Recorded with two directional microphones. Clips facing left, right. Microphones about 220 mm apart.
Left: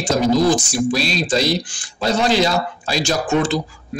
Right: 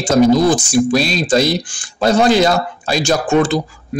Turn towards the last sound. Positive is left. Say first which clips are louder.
# right 4 dB
turn(degrees=-50)  # may be behind; listen again after turning